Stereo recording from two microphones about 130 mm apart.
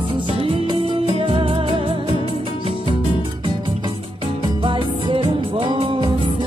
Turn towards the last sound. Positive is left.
turn(degrees=-40)  # may be behind; listen again after turning